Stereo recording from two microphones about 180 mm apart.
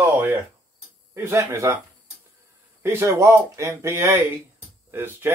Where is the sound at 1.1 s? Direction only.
15° right (ahead or behind).